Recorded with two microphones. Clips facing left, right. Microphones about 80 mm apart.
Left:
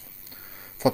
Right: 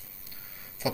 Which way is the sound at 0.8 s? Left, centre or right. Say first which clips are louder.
Left 9 dB; left.